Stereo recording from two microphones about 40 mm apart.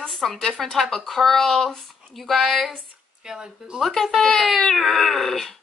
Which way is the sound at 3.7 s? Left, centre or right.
Centre.